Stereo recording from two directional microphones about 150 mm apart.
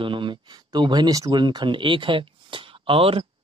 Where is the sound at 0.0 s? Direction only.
35° right (ahead or behind).